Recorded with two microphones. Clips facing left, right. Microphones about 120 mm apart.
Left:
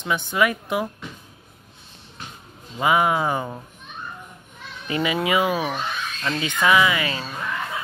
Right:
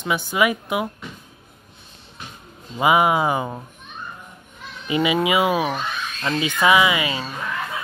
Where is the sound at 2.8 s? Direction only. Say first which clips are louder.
Right 3 dB; 15° right (ahead or behind).